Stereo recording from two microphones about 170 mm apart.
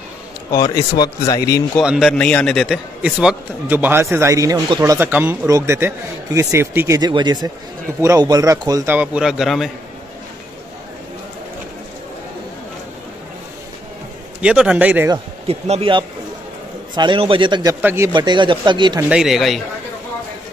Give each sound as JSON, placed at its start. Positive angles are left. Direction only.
{"t": 0.5, "sound": "speech", "side_deg": 20}
{"t": 1.8, "sound": "a man's voice", "side_deg": 0}
{"t": 7.0, "sound": "speech", "side_deg": -25}
{"t": 8.9, "sound": "speech", "side_deg": -5}
{"t": 14.4, "sound": "a man's voice", "side_deg": -5}
{"t": 15.4, "sound": "speech", "side_deg": -35}
{"t": 17.8, "sound": "a man's voice", "side_deg": -15}
{"t": 18.1, "sound": "speech", "side_deg": -25}
{"t": 19.0, "sound": "speech", "side_deg": -5}